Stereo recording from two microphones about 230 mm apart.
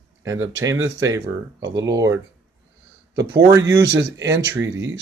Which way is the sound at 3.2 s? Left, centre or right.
Centre.